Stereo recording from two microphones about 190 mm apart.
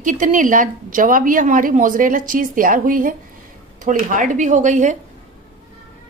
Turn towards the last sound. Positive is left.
turn(degrees=-40)  # may be behind; listen again after turning